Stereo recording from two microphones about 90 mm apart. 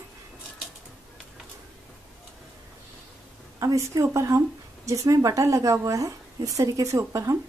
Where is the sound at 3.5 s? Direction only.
40° right (ahead or behind).